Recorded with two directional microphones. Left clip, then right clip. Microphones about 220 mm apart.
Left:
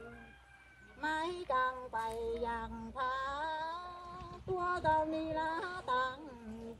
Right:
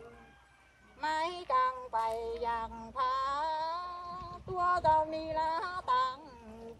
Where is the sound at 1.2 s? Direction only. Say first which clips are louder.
Right 4 dB; centre (ahead or behind).